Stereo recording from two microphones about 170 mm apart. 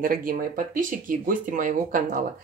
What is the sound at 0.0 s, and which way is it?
Speech, 55° right (ahead or behind).